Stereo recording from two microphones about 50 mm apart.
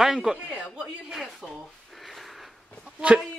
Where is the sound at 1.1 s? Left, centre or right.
Centre.